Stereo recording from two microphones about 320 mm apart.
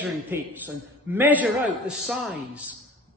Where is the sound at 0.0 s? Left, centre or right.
Centre.